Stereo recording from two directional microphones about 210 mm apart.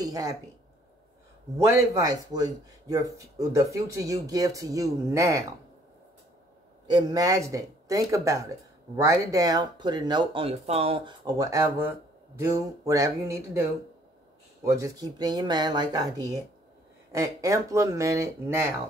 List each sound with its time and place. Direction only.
0.0 s speech: 15° right (ahead or behind)
1.6 s speech: 15° right (ahead or behind)
6.9 s speech: 20° right (ahead or behind)